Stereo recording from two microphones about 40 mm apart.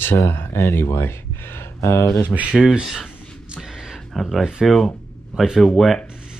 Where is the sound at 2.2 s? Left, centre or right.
Right.